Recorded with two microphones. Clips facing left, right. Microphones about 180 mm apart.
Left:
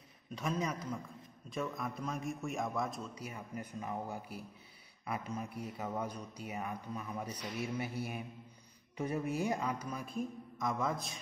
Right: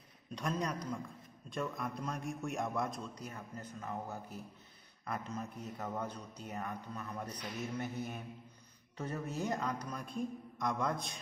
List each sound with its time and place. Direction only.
0.3 s a man's voice: 5° left (ahead or behind)